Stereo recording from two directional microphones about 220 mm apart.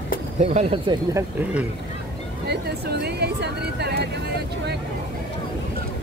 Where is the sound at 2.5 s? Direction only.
45° right (ahead or behind).